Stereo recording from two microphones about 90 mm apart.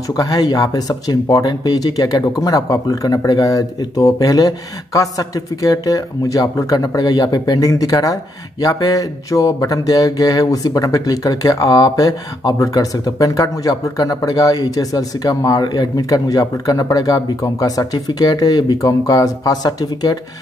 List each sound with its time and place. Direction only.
0.1 s speech: 45° left (ahead or behind)